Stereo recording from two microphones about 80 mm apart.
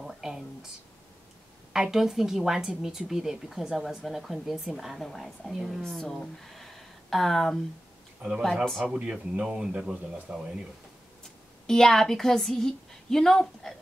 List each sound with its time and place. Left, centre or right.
0.0 s a sound: centre
1.7 s a woman's voice: centre
8.2 s speech: right
8.6 s a woman's voice: centre
8.9 s speech: centre
11.6 s a woman's voice: centre